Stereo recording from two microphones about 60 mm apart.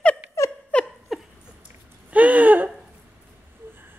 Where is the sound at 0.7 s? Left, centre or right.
Left.